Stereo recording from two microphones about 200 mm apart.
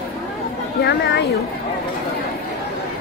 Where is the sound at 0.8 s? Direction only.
55° left (ahead or behind).